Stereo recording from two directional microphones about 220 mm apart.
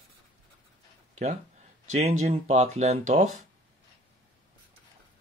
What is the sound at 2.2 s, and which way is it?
Speech, 30° right (ahead or behind).